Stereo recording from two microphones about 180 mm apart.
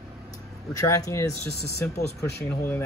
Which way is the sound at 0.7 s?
20° left (ahead or behind).